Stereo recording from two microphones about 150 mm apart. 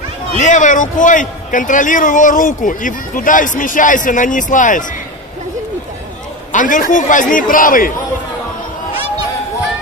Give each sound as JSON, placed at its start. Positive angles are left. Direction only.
{"t": 0.3, "sound": "a man's voice", "side_deg": 55}
{"t": 6.5, "sound": "a man's voice", "side_deg": 60}